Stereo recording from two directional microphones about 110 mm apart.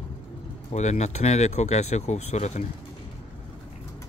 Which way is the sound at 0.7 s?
90° left.